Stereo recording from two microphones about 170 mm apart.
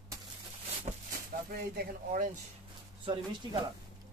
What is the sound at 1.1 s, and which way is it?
Speech, 60° right (ahead or behind).